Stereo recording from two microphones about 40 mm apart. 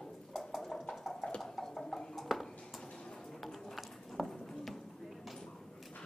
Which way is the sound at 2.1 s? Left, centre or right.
Centre.